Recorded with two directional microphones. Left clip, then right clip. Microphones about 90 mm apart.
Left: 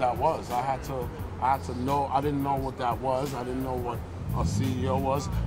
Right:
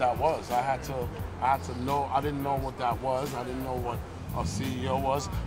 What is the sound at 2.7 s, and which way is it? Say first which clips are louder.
Speech: left 1 dB; 15° right (ahead or behind).